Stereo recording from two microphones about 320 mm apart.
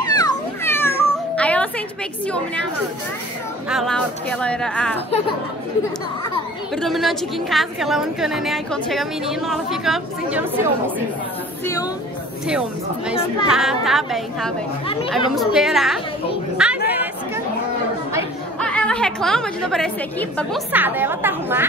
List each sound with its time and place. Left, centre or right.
0.0 s cat: centre
2.2 s a woman's voice: centre
3.6 s a woman's voice: centre
6.7 s a woman's voice: centre
11.6 s speech: centre
12.4 s a woman's voice: centre
14.9 s speech: centre
15.3 s a woman's voice: centre
16.5 s a sound: centre
18.6 s a woman's voice: centre